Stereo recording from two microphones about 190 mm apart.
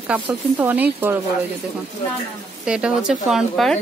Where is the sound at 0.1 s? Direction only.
10° right (ahead or behind).